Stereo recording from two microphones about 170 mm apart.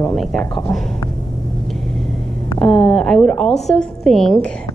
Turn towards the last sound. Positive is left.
turn(degrees=5)  # may be behind; listen again after turning